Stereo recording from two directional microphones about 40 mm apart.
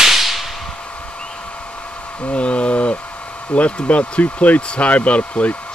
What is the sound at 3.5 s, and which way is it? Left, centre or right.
Speech, left.